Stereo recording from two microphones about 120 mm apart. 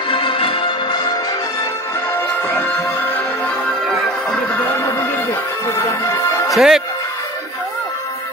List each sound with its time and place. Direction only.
0.1 s music: 50° left (ahead or behind)
5.8 s music: 25° left (ahead or behind)
6.5 s speech: 5° right (ahead or behind)